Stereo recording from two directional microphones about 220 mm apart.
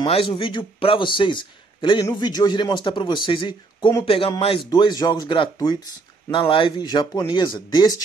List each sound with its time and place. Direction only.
0.0 s a man's voice: 25° left (ahead or behind)